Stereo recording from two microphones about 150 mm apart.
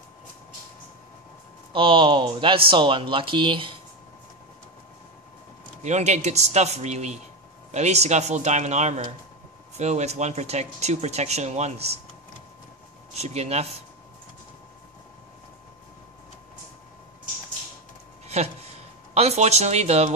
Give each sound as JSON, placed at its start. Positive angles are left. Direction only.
{"t": 1.7, "sound": "speech", "side_deg": -35}
{"t": 5.8, "sound": "speech", "side_deg": -50}
{"t": 13.1, "sound": "speech", "side_deg": -45}
{"t": 18.2, "sound": "a sound", "side_deg": -45}
{"t": 19.1, "sound": "speech", "side_deg": -45}